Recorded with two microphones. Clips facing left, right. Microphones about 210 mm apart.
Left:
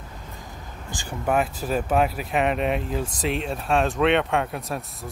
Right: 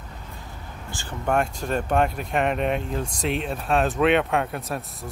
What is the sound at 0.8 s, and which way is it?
Speech, 15° left (ahead or behind).